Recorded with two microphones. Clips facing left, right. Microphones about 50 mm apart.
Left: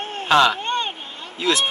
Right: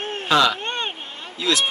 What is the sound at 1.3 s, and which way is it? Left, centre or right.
Speech, left.